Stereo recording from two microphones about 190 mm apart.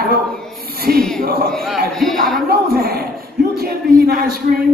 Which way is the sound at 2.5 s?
50° right (ahead or behind).